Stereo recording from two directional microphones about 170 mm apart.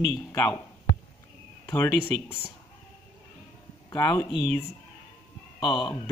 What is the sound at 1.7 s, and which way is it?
Speech, 10° left (ahead or behind).